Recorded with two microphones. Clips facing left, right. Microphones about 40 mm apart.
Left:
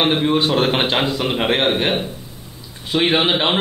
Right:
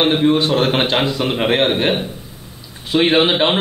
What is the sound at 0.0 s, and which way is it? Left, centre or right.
A man's voice, centre.